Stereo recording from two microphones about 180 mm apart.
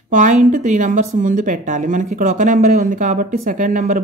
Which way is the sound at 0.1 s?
45° right (ahead or behind).